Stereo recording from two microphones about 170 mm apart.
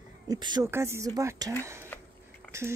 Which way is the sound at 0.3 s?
25° right (ahead or behind).